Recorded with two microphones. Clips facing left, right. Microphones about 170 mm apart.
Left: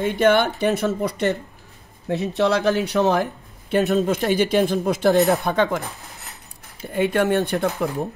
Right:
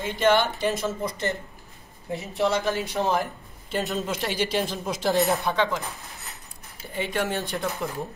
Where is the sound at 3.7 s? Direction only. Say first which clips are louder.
Left 9 dB; 60° left (ahead or behind).